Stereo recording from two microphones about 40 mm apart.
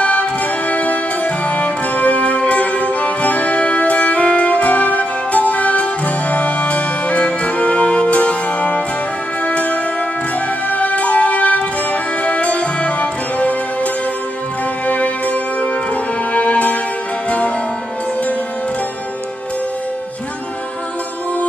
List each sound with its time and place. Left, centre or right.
0.0 s music: left
14.9 s music: left